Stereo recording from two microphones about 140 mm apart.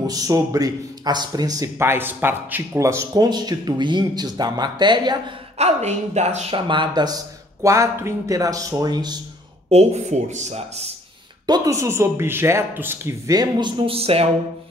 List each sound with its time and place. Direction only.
0.0 s speech: 25° right (ahead or behind)
5.6 s speech: 55° right (ahead or behind)
6.5 s speech: 35° right (ahead or behind)
7.6 s speech: 20° right (ahead or behind)
9.7 s speech: 50° right (ahead or behind)
11.4 s speech: 25° right (ahead or behind)
13.3 s speech: 30° right (ahead or behind)